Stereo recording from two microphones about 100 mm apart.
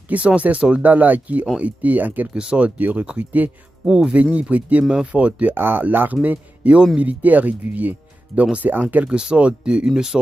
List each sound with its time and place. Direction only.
0.1 s speech: 15° right (ahead or behind)